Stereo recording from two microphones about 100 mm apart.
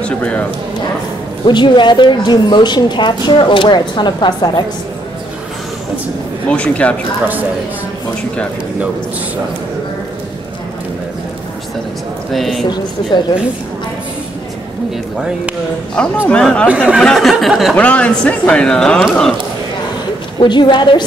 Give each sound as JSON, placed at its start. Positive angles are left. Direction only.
{"t": 0.0, "sound": "speech", "side_deg": 10}
{"t": 1.4, "sound": "a woman's voice", "side_deg": 50}
{"t": 6.5, "sound": "a man's voice", "side_deg": 10}
{"t": 12.3, "sound": "a sound", "side_deg": 0}
{"t": 16.3, "sound": "a man's voice", "side_deg": 10}
{"t": 16.6, "sound": "speech", "side_deg": -10}
{"t": 17.0, "sound": "a sound", "side_deg": 0}
{"t": 17.7, "sound": "a man's voice", "side_deg": 15}
{"t": 20.3, "sound": "a woman's voice", "side_deg": 50}